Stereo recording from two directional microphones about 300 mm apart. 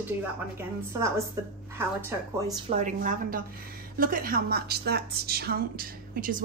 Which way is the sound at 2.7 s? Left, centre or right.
Right.